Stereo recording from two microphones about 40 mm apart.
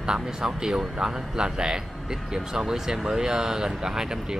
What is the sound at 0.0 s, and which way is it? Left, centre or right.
Speech, centre.